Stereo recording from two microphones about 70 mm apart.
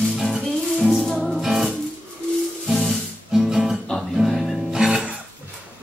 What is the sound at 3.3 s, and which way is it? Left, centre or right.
Guitar, centre.